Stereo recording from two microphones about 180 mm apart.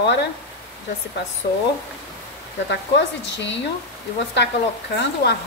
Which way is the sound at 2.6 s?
75° left (ahead or behind).